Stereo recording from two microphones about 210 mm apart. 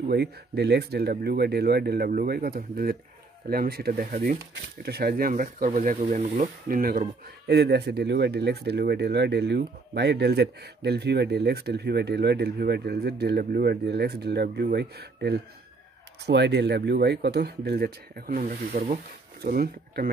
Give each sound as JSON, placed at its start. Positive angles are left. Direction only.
{"t": 0.1, "sound": "speech", "side_deg": -50}